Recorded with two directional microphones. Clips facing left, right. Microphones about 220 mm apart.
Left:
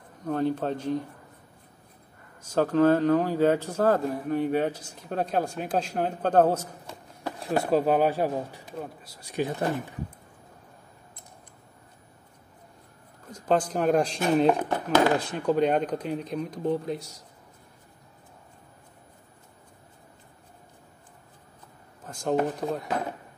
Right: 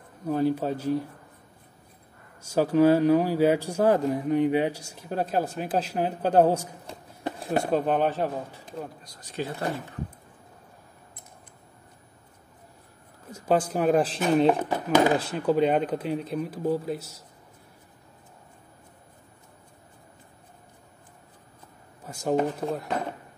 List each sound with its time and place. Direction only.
0.2 s a man's voice: 5° right (ahead or behind)
2.4 s a man's voice: 10° right (ahead or behind)
7.7 s speech: 5° left (ahead or behind)
13.3 s a man's voice: 10° right (ahead or behind)
22.0 s a sound: 10° right (ahead or behind)
22.3 s speech: centre (ahead or behind)